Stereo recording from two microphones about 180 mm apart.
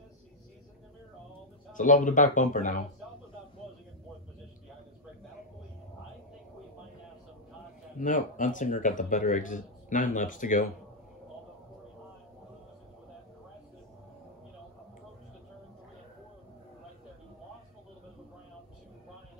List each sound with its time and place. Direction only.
1.7 s speech: 45° left (ahead or behind)
8.0 s speech: 45° left (ahead or behind)